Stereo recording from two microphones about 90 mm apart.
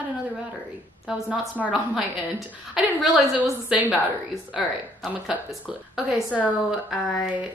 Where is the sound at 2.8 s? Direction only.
5° right (ahead or behind).